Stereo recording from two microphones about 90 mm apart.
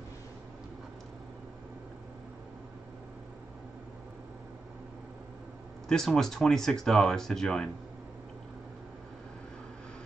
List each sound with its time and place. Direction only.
5.9 s speech: 5° left (ahead or behind)